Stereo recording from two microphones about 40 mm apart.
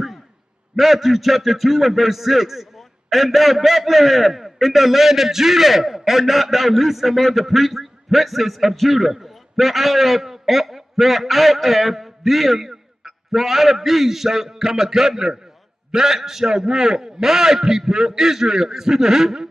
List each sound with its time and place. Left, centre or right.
0.7 s a man's voice: centre